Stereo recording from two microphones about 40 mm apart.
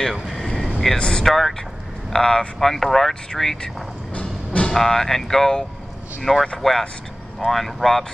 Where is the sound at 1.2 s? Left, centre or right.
Centre.